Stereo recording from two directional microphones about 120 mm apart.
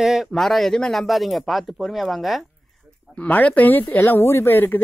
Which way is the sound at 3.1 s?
10° left (ahead or behind).